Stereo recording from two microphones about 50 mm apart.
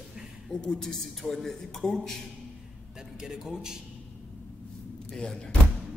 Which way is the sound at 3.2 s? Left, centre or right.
Centre.